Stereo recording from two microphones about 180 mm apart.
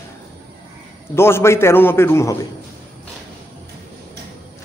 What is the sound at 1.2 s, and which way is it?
A man's voice, 15° left (ahead or behind).